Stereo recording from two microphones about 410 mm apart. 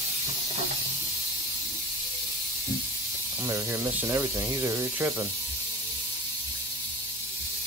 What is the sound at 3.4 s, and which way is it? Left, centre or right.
Speech, centre.